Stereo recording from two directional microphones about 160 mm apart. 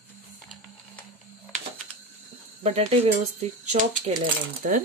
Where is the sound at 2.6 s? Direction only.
45° right (ahead or behind).